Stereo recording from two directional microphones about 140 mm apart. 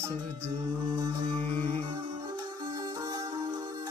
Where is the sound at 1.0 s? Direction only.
30° right (ahead or behind).